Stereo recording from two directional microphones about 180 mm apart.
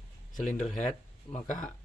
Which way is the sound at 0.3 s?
45° left (ahead or behind).